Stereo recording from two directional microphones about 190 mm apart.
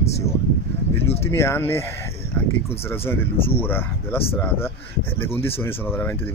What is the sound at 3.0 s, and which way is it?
Speech, 10° left (ahead or behind).